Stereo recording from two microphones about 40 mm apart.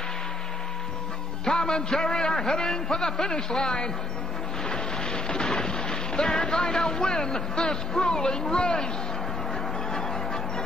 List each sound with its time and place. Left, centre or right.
1.4 s a man's voice: centre
4.6 s boat: centre
9.8 s music: centre